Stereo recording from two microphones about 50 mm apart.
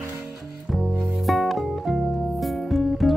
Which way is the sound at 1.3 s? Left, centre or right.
Centre.